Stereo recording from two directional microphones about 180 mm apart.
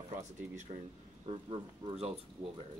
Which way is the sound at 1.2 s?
35° right (ahead or behind).